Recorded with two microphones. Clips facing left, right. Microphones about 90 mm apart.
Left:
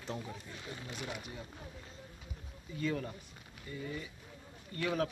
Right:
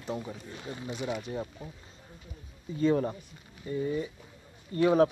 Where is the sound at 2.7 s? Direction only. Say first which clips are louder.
Right 10 dB; 30° right (ahead or behind).